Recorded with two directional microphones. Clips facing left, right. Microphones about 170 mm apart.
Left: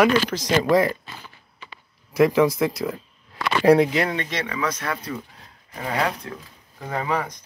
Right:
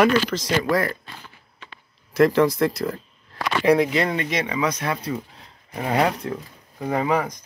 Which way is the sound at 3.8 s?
5° left (ahead or behind).